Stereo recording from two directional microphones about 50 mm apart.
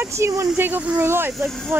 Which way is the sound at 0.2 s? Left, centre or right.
Right.